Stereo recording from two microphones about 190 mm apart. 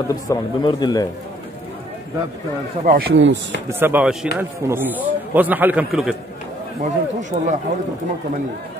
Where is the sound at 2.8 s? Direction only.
50° right (ahead or behind).